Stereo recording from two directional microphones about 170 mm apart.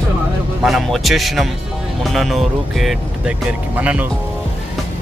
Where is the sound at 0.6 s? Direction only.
Centre (ahead or behind).